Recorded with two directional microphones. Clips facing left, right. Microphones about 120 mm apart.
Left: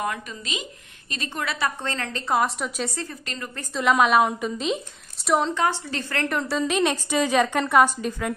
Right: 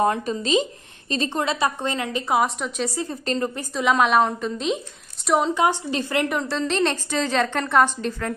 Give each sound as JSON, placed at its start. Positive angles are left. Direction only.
{"t": 0.0, "sound": "a woman's voice", "side_deg": -30}
{"t": 2.3, "sound": "a woman's voice", "side_deg": 0}
{"t": 3.1, "sound": "speech", "side_deg": -30}
{"t": 3.7, "sound": "a woman's voice", "side_deg": 0}
{"t": 5.5, "sound": "a woman's voice", "side_deg": -15}
{"t": 6.4, "sound": "a woman's voice", "side_deg": 10}